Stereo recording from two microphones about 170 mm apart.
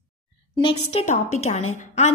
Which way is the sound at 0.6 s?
40° left (ahead or behind).